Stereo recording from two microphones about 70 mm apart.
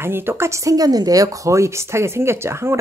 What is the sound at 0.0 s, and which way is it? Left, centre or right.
A woman's voice, right.